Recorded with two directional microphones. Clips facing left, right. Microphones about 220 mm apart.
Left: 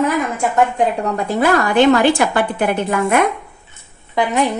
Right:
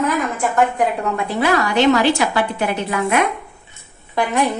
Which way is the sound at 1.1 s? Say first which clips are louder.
Left 3 dB; 45° left (ahead or behind).